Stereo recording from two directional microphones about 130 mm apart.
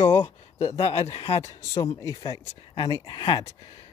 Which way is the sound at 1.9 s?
25° left (ahead or behind).